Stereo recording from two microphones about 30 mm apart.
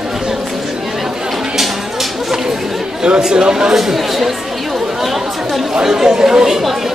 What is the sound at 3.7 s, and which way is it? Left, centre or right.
Speech, centre.